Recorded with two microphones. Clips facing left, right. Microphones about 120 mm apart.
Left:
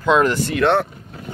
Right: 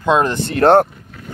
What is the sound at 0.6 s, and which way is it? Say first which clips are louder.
Speech: right 7 dB; 40° right (ahead or behind).